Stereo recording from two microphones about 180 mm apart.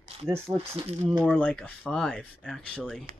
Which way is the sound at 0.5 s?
15° right (ahead or behind).